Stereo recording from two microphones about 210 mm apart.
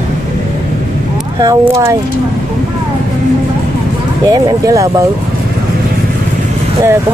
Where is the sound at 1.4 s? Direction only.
15° right (ahead or behind).